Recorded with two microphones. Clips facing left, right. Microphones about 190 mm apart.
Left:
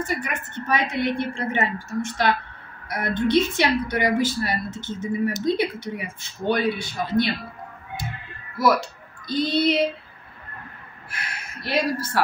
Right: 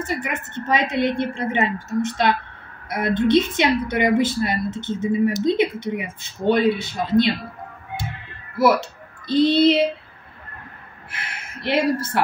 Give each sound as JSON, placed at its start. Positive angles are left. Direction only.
{"t": 0.0, "sound": "a woman's voice", "side_deg": -20}
{"t": 9.3, "sound": "a woman's voice", "side_deg": -25}
{"t": 11.1, "sound": "gasp", "side_deg": -25}